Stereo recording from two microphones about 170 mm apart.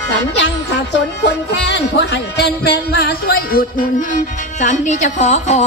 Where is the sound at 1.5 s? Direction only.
90° left.